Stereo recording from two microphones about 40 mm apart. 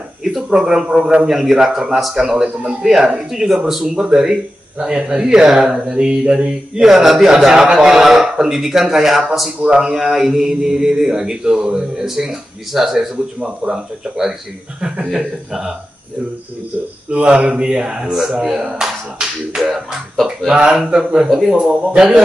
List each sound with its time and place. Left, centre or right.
0.2 s speech: centre
2.2 s speech: centre
9.6 s speech: right
9.8 s speech: centre
17.1 s speech: right; by 21.3 s centre
21.3 s speech: centre
21.5 s speech: centre